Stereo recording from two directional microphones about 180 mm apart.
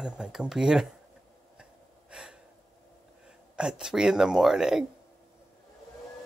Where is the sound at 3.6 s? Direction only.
5° right (ahead or behind).